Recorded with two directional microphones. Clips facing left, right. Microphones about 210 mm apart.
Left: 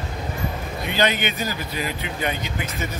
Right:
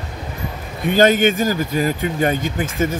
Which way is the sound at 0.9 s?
45° right (ahead or behind).